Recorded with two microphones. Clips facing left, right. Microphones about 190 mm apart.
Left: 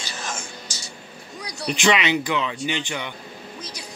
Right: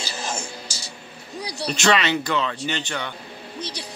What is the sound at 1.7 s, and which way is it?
Speech, 15° left (ahead or behind).